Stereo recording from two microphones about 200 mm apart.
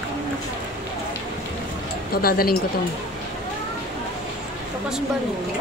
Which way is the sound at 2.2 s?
50° left (ahead or behind).